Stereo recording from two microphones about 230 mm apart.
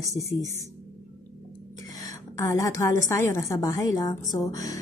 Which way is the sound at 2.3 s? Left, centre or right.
Centre.